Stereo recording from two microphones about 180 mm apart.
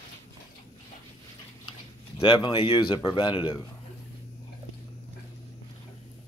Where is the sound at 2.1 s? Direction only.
25° left (ahead or behind).